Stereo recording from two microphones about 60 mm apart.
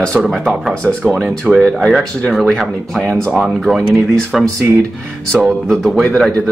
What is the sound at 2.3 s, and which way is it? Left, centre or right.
Speech, centre.